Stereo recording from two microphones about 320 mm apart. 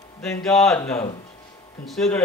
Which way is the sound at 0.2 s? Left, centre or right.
Centre.